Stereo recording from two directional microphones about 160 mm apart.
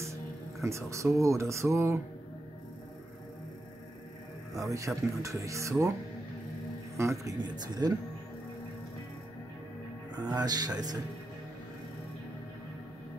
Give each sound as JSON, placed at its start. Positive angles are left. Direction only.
{"t": 0.0, "sound": "speech", "side_deg": -20}
{"t": 4.6, "sound": "speech", "side_deg": -20}
{"t": 7.0, "sound": "speech", "side_deg": -20}
{"t": 10.1, "sound": "speech", "side_deg": -25}